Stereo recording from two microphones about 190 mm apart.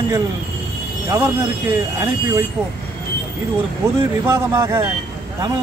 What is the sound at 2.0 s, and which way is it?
Speech, 15° right (ahead or behind).